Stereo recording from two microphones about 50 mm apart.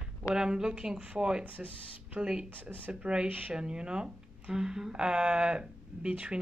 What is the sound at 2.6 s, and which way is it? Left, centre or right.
Speech, left.